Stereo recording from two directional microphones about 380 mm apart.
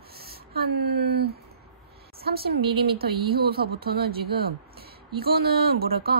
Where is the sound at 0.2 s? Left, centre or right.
Right.